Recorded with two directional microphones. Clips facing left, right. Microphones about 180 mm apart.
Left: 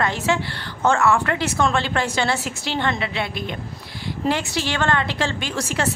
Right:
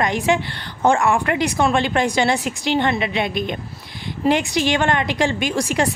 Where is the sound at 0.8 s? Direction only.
15° right (ahead or behind).